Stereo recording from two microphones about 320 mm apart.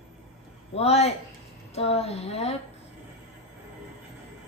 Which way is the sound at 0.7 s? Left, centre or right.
Centre.